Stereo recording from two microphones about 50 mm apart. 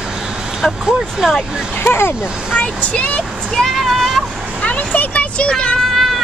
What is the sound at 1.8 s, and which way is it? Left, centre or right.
Speech, left.